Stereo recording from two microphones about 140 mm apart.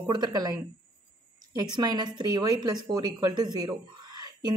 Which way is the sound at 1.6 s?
30° right (ahead or behind).